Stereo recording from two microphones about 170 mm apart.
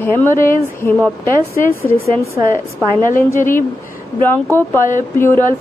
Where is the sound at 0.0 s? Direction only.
10° left (ahead or behind).